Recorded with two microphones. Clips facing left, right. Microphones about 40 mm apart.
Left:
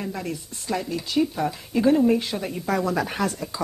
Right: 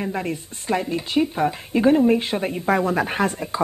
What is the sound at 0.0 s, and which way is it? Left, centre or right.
Speech, right.